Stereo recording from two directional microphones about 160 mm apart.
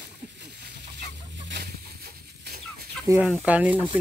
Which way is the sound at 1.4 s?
85° right.